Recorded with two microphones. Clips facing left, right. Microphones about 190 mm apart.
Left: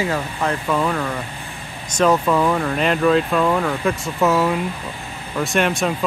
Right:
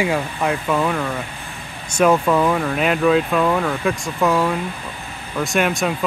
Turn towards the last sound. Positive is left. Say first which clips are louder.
# even
turn(degrees=0)  # may be behind; listen again after turning